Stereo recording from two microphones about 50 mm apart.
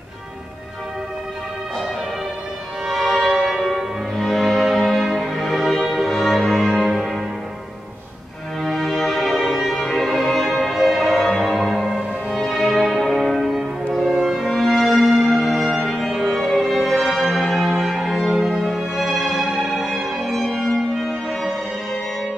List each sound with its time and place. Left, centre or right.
2.9 s music: centre
3.3 s church bell: centre
3.6 s music: centre
8.6 s music: centre